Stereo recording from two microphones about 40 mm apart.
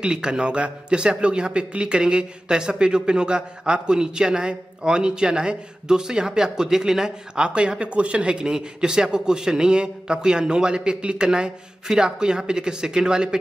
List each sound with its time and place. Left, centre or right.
0.0 s speech: right